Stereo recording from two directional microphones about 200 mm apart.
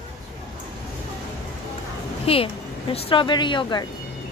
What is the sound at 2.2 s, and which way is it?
Speech, 30° left (ahead or behind).